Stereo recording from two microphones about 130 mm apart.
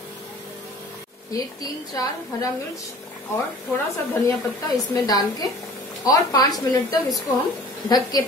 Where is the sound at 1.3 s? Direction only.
25° left (ahead or behind).